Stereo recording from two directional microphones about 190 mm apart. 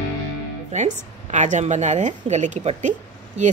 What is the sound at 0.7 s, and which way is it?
A woman's voice, 40° right (ahead or behind).